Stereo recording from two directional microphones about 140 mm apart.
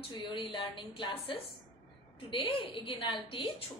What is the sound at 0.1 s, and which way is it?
A woman's voice, 35° left (ahead or behind).